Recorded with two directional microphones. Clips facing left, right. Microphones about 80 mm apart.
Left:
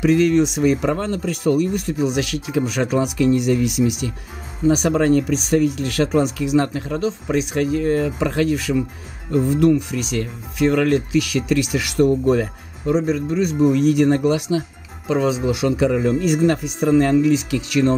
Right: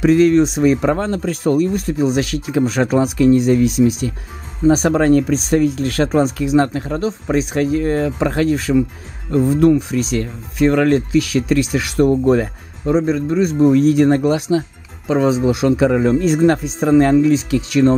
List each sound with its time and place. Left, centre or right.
0.0 s speech: right
15.9 s speech: right
16.8 s speech: right